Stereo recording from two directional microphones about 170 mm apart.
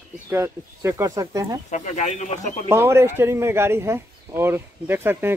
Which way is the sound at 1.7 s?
45° left (ahead or behind).